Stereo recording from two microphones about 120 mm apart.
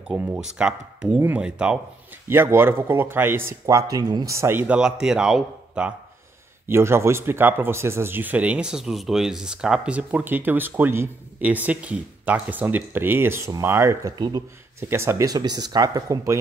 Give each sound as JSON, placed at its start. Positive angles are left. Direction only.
{"t": 0.1, "sound": "speech", "side_deg": -15}
{"t": 2.2, "sound": "speech", "side_deg": -20}
{"t": 6.7, "sound": "speech", "side_deg": -20}
{"t": 14.1, "sound": "speech", "side_deg": -40}
{"t": 14.8, "sound": "speech", "side_deg": -20}
{"t": 15.3, "sound": "speech", "side_deg": -35}